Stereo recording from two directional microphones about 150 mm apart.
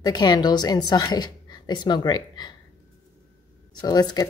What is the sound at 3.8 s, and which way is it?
Speech, 25° left (ahead or behind).